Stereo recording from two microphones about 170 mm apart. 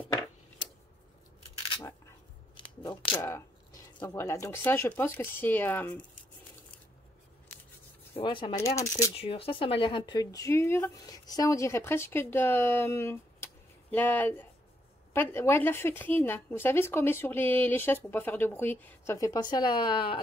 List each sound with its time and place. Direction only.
2.8 s shuffling cards: 25° left (ahead or behind)
3.2 s speech: 15° left (ahead or behind)
8.2 s speech: 30° left (ahead or behind)
8.5 s speech: 15° left (ahead or behind)
9.1 s speech: 35° left (ahead or behind)